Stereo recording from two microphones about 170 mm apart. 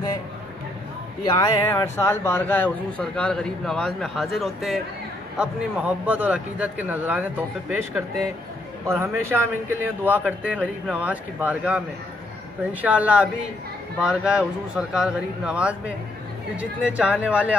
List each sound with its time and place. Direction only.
1.2 s speech: 30° left (ahead or behind)
1.6 s a man's voice: 15° left (ahead or behind); by 8.0 s 5° right (ahead or behind)
9.0 s a man's voice: 15° right (ahead or behind)
12.8 s a man's voice: 10° right (ahead or behind)